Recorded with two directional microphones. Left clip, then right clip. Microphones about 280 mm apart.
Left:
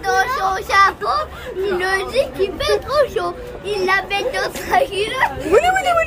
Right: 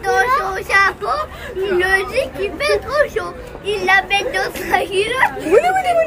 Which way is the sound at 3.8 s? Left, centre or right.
Centre.